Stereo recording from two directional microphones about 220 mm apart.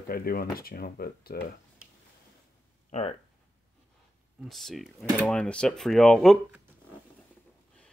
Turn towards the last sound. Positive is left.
turn(degrees=0)  # may be behind; listen again after turning